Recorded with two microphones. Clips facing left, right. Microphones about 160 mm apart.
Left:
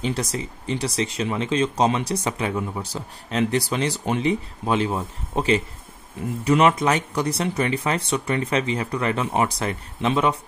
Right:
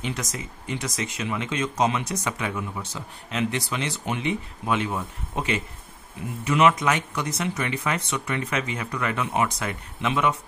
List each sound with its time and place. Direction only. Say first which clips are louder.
0.0 s speech: left 5 dB; 30° left (ahead or behind)